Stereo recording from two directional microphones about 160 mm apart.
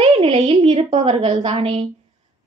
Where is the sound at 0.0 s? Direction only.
40° right (ahead or behind).